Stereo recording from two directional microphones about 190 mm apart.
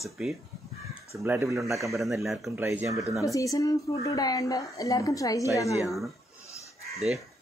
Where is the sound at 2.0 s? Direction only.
Centre (ahead or behind).